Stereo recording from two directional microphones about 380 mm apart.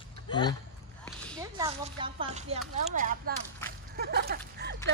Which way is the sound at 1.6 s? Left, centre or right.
Centre.